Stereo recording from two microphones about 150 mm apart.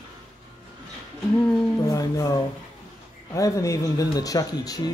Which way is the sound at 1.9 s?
25° left (ahead or behind).